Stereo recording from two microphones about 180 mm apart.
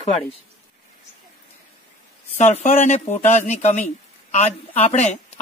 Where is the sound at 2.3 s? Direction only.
35° left (ahead or behind).